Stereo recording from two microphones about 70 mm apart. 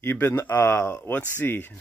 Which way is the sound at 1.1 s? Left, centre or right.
Left.